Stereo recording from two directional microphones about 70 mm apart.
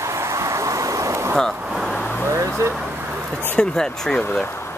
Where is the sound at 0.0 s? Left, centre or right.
Right.